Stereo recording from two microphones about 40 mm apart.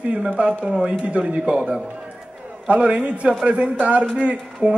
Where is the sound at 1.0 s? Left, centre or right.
Right.